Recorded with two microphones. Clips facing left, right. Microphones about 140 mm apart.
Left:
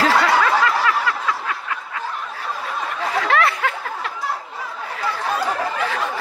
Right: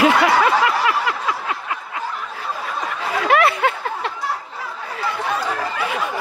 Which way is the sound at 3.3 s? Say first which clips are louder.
Right 5 dB; 20° right (ahead or behind).